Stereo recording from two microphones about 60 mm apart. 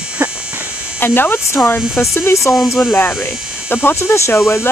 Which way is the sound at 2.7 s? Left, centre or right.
Left.